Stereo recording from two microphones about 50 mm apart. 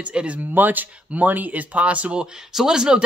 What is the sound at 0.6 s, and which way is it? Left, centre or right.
Speech, right.